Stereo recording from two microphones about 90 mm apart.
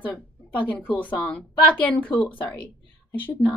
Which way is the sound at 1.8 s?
15° left (ahead or behind).